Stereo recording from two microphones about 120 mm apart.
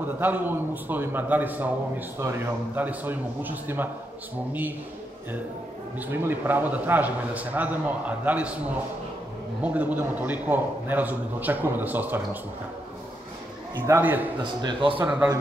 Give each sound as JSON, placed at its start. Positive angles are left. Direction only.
{"t": 0.0, "sound": "a man's voice", "side_deg": -15}
{"t": 5.9, "sound": "a man's voice", "side_deg": -15}
{"t": 9.6, "sound": "a man's voice", "side_deg": -15}
{"t": 13.8, "sound": "a man's voice", "side_deg": -20}
{"t": 14.4, "sound": "speech", "side_deg": -40}
{"t": 15.0, "sound": "a man's voice", "side_deg": -15}